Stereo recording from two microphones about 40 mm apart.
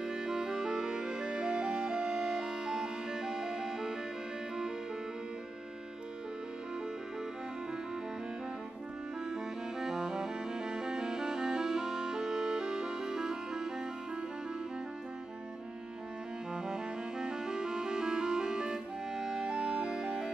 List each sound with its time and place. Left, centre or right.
0.0 s music: centre
9.3 s music: centre
16.5 s music: centre